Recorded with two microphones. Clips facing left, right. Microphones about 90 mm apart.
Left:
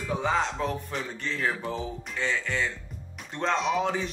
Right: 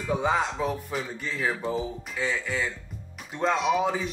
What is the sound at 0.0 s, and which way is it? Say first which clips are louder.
Speech: right 2 dB; 10° right (ahead or behind).